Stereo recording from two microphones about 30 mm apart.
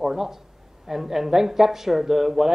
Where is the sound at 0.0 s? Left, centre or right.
Centre.